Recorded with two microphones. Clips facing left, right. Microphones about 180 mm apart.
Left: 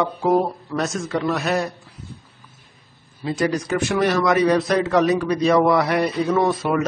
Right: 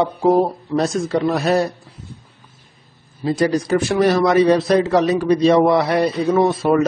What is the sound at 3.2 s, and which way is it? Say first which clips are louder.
A man's voice: right 4 dB; 35° right (ahead or behind).